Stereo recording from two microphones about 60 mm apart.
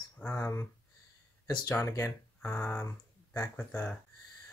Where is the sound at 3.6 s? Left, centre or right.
Left.